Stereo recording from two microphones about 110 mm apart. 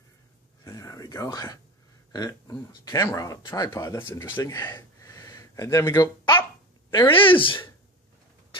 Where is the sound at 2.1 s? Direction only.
35° left (ahead or behind).